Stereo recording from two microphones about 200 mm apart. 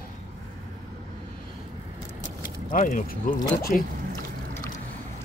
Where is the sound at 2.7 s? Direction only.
40° left (ahead or behind).